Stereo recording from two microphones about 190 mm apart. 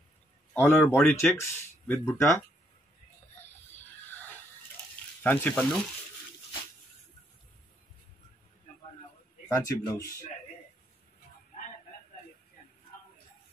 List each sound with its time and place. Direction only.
0.6 s speech: 10° left (ahead or behind)
3.3 s a sound: 10° left (ahead or behind)
5.2 s speech: 10° left (ahead or behind)
9.5 s speech: 15° left (ahead or behind)